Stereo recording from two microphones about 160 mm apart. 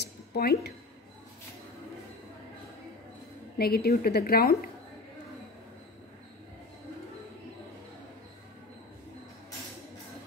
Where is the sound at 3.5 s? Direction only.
75° left (ahead or behind).